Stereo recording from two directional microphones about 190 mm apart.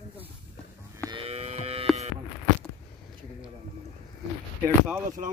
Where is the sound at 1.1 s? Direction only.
30° right (ahead or behind).